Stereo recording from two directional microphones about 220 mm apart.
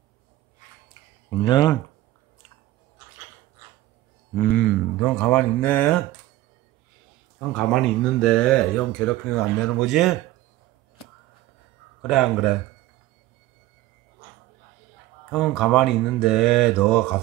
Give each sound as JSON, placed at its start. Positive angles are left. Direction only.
{"t": 1.4, "sound": "speech", "side_deg": 20}
{"t": 4.4, "sound": "speech", "side_deg": 5}
{"t": 7.3, "sound": "speech", "side_deg": 0}
{"t": 12.0, "sound": "speech", "side_deg": 0}
{"t": 15.3, "sound": "speech", "side_deg": 0}